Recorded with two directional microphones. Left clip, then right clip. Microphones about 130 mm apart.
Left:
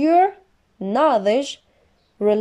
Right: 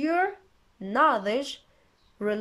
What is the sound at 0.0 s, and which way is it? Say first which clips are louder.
Speech: left 10 dB; 30° left (ahead or behind).